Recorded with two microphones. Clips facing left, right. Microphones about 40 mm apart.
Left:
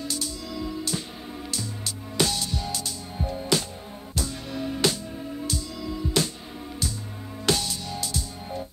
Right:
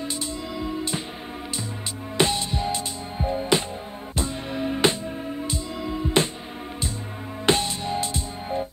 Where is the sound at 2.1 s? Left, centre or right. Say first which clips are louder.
Right 4 dB; right.